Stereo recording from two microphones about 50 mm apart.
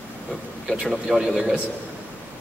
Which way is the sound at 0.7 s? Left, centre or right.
Centre.